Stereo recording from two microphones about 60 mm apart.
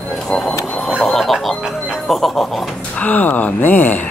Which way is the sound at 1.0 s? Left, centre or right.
Centre.